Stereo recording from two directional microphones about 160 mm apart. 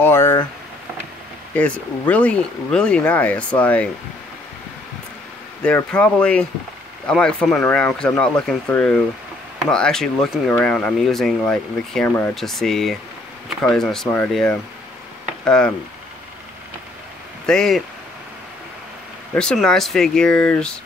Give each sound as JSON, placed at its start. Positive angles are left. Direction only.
{"t": 0.0, "sound": "a sound", "side_deg": 15}
{"t": 1.5, "sound": "speech", "side_deg": 10}
{"t": 5.6, "sound": "speech", "side_deg": 5}
{"t": 17.5, "sound": "speech", "side_deg": 5}
{"t": 19.3, "sound": "speech", "side_deg": 5}